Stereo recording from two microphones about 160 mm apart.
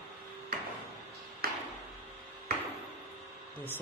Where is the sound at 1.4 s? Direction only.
75° right (ahead or behind).